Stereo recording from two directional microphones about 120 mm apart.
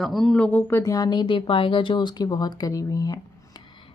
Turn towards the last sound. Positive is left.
turn(degrees=30)  # may be behind; listen again after turning